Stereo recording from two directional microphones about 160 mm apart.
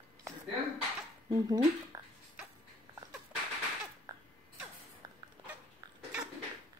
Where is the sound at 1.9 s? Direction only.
20° right (ahead or behind).